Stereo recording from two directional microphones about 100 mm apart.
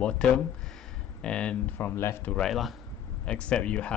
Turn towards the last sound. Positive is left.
turn(degrees=10)  # may be behind; listen again after turning